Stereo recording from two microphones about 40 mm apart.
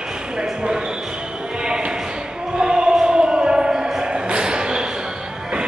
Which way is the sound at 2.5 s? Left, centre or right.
Centre.